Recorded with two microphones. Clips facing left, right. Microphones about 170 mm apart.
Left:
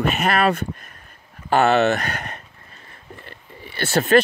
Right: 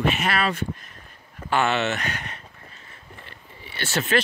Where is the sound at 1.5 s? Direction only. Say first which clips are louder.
Left 6 dB; 40° left (ahead or behind).